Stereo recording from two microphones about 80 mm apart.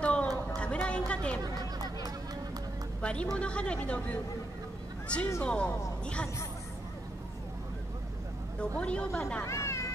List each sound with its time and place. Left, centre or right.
0.0 s a sound: centre
0.6 s music: centre
1.4 s chatter: right
3.0 s a woman's voice: centre
5.4 s speech: centre
8.5 s speech: centre
9.4 s a sound: left